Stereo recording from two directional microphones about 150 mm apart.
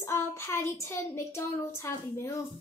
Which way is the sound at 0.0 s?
15° left (ahead or behind).